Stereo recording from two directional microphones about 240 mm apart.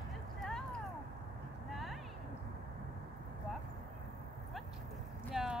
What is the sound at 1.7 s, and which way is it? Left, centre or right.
Clip-clop, centre.